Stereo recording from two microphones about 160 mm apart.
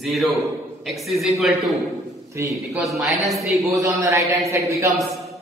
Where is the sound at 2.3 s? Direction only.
20° right (ahead or behind).